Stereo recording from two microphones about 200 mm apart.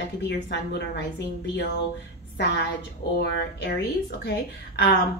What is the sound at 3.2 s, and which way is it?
A woman's voice, 55° left (ahead or behind).